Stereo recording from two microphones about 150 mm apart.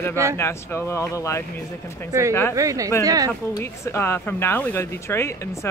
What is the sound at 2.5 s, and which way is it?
Speech, 20° right (ahead or behind).